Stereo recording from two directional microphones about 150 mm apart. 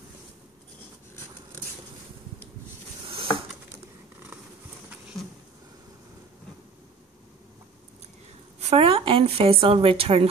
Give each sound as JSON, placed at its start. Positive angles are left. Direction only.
{"t": 8.5, "sound": "a woman's voice", "side_deg": -45}